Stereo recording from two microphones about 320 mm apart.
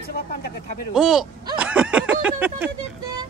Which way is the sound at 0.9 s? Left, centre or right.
Centre.